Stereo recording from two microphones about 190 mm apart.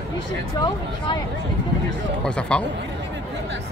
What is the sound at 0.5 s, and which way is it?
Speech, 20° left (ahead or behind).